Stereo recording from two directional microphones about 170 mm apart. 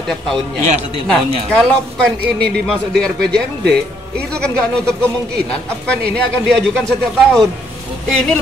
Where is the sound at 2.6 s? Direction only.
5° left (ahead or behind).